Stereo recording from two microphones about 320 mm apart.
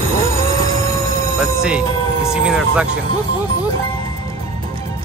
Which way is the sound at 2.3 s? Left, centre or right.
Centre.